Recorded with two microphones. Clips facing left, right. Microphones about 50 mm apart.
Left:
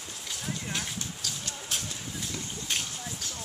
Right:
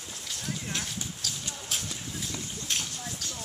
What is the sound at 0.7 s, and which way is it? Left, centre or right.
Clip-clop, centre.